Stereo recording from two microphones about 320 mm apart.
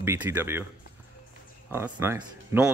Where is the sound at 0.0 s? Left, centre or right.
Centre.